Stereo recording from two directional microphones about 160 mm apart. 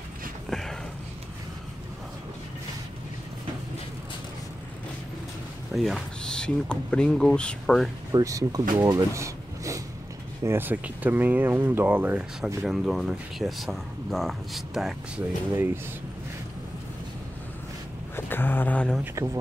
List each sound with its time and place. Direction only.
0.5 s a sound: centre (ahead or behind)
5.8 s speech: centre (ahead or behind)
8.1 s speech: 20° right (ahead or behind); by 15.2 s centre (ahead or behind)
15.5 s speech: 15° right (ahead or behind)
18.1 s speech: 15° left (ahead or behind)